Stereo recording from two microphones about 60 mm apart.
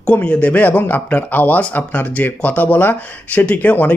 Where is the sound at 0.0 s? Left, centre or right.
Centre.